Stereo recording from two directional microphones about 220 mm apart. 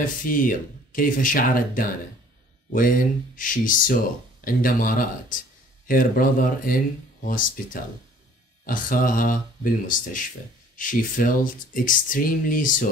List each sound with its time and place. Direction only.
0.0 s speech: 40° left (ahead or behind)
3.3 s speech: 40° left (ahead or behind)